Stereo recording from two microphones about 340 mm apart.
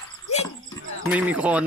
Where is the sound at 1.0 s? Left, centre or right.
Centre.